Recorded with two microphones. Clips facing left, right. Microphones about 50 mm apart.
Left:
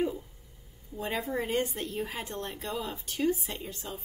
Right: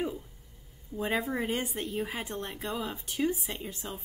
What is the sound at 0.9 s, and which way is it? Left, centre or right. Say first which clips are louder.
Speech: right 2 dB; centre.